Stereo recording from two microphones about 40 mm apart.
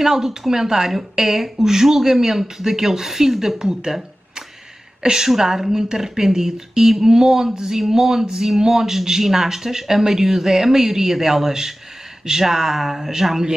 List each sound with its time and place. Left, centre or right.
0.0 s a woman's voice: centre
5.0 s a woman's voice: centre